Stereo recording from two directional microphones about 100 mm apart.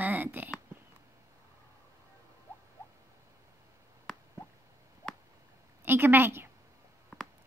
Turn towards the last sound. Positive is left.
turn(degrees=-25)  # may be behind; listen again after turning